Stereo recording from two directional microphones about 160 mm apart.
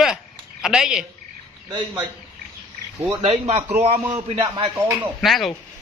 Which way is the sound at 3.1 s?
35° right (ahead or behind).